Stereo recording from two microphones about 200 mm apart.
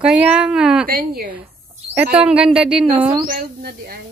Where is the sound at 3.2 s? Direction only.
45° right (ahead or behind).